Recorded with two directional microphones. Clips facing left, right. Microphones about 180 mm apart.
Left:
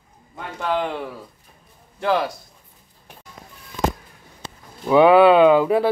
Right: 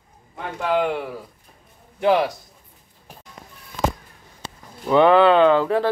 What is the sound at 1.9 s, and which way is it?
Speech, 15° right (ahead or behind).